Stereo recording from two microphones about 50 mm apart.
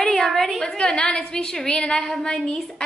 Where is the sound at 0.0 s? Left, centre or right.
Centre.